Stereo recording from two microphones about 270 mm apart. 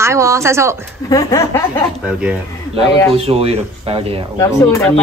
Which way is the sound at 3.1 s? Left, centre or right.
Right.